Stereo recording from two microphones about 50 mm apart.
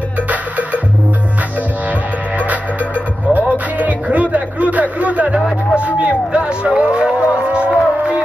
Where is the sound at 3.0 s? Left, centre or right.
Left.